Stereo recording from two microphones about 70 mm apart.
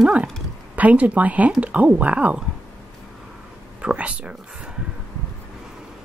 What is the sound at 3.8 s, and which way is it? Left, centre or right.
Speech, centre.